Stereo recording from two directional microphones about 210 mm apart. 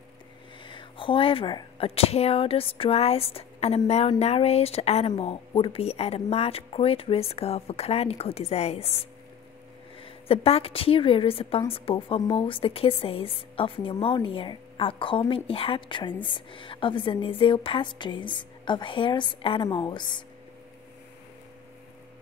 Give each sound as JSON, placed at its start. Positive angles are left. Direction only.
{"t": 0.7, "sound": "a woman's voice", "side_deg": 25}